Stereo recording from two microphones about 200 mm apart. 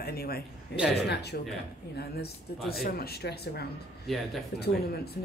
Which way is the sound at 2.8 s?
50° left (ahead or behind).